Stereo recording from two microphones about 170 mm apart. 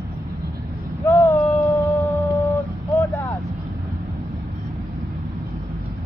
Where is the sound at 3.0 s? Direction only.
10° left (ahead or behind).